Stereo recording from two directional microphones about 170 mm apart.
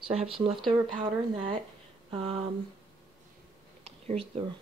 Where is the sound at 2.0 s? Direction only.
35° right (ahead or behind).